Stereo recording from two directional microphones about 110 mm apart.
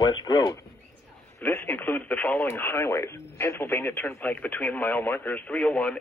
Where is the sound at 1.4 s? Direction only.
20° left (ahead or behind).